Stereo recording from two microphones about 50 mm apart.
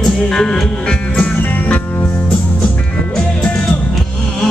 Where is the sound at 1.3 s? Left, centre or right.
Left.